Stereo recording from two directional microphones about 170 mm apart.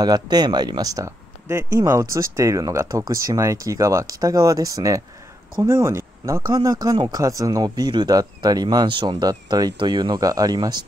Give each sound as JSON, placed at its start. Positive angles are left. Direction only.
{"t": 0.0, "sound": "speech", "side_deg": -25}